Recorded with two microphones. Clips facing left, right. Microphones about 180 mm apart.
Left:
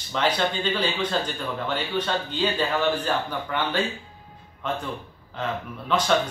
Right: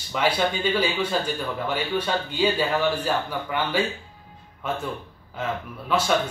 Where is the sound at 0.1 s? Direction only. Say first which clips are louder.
Right 1 dB; 10° right (ahead or behind).